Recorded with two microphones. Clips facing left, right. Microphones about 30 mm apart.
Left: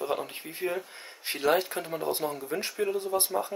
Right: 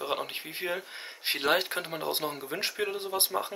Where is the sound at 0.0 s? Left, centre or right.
Right.